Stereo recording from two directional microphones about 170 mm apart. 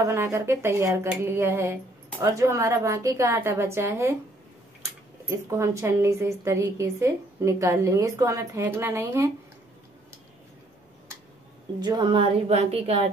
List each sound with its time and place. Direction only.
0.0 s a woman's voice: 15° right (ahead or behind)
5.3 s a woman's voice: 15° right (ahead or behind)
11.8 s speech: 25° right (ahead or behind)
12.4 s speech: 40° right (ahead or behind)